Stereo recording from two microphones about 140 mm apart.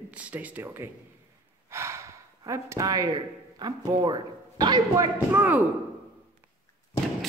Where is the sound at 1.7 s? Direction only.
20° right (ahead or behind).